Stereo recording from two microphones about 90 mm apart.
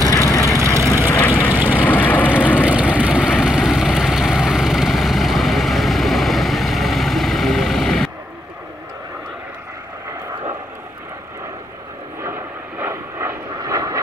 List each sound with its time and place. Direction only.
0.1 s vehicle: 35° left (ahead or behind)
0.6 s vehicle: 30° right (ahead or behind)
1.2 s vehicle: 25° left (ahead or behind)
2.6 s vehicle: 15° right (ahead or behind); by 8.1 s 5° left (ahead or behind)
12.2 s vehicle: 25° right (ahead or behind)
13.6 s vehicle: 40° right (ahead or behind)